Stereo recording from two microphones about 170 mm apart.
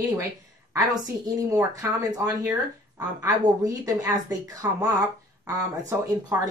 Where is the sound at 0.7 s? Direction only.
20° right (ahead or behind).